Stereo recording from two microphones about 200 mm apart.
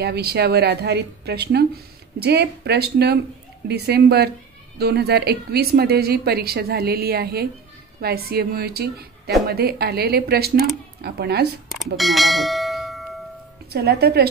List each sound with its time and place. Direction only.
0.0 s speech: 55° right (ahead or behind)
11.7 s bell: centre (ahead or behind)
13.7 s speech: 55° right (ahead or behind)